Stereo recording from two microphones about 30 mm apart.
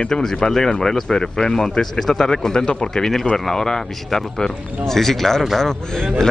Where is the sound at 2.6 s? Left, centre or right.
Left.